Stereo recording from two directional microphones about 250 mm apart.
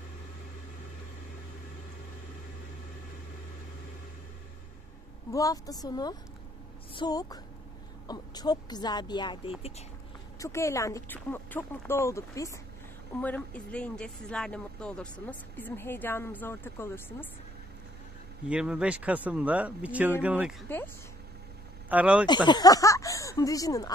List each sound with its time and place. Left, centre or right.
5.3 s a woman's voice: centre
10.4 s speech: centre
18.5 s speech: centre
20.6 s speech: centre
21.8 s speech: centre
22.2 s speech: centre